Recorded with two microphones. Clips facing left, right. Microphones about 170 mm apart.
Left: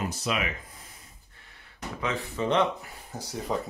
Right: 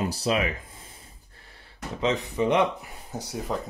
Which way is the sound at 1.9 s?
20° right (ahead or behind).